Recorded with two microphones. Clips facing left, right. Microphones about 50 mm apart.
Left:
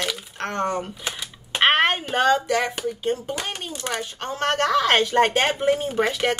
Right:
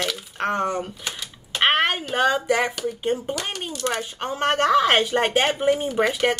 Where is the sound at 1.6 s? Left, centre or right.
Centre.